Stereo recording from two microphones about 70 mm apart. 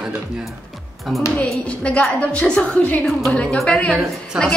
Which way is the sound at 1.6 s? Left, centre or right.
Centre.